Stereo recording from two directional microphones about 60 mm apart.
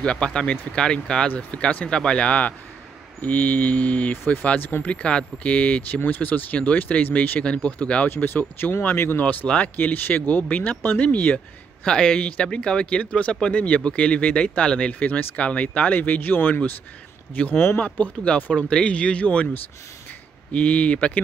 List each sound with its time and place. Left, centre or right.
0.0 s speech: centre; by 4.9 s left
4.9 s speech: centre
8.1 s speech: left
9.2 s speech: left
11.3 s speech: centre; by 16.7 s left
17.4 s speech: left
20.5 s speech: left